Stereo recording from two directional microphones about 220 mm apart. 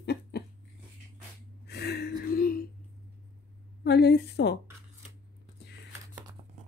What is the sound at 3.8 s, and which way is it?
Speech, 50° left (ahead or behind).